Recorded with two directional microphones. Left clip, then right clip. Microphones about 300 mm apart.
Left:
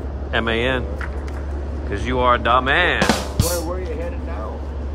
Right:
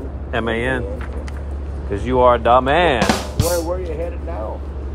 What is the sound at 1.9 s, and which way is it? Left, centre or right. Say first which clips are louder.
A man's voice: right 4 dB; centre.